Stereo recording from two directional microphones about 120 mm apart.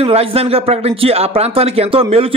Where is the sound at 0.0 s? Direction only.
55° right (ahead or behind).